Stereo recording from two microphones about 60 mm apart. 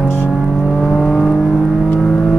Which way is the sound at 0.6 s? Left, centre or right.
Centre.